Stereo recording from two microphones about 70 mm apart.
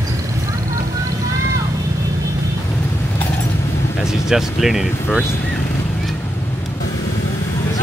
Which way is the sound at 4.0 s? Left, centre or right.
Centre.